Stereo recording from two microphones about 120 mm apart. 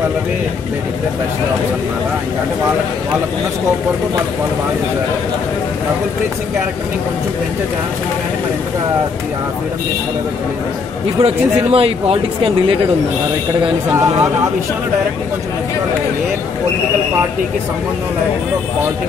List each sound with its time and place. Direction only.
11.2 s speech: 50° right (ahead or behind)